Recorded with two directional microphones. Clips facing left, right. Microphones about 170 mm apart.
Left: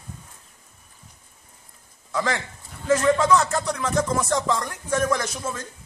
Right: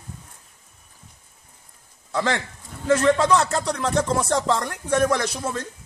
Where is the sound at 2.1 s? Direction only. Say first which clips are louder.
Right 2 dB; 30° right (ahead or behind).